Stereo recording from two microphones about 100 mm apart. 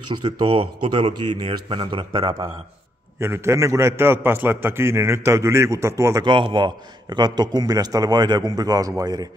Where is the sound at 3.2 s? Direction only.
25° right (ahead or behind).